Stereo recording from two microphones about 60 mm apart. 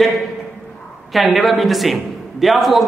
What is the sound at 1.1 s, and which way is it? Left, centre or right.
A man's voice, centre.